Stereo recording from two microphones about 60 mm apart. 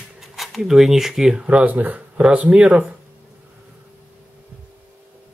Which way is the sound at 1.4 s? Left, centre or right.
Right.